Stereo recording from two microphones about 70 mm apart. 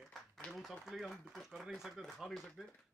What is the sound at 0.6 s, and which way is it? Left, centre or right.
Speech, centre.